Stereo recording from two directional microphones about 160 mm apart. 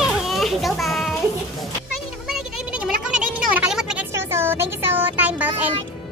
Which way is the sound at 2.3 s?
5° right (ahead or behind).